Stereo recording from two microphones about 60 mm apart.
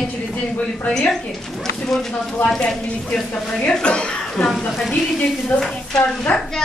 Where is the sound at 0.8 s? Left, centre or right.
Centre.